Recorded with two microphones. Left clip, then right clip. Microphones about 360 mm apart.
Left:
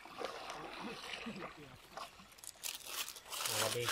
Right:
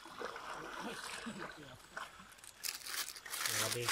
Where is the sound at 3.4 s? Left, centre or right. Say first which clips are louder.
Left 1 dB; centre.